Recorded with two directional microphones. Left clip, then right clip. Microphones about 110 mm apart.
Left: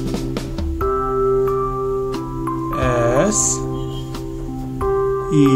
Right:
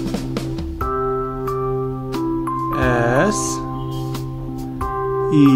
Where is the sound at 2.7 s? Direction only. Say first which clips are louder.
Left 1 dB; 50° right (ahead or behind).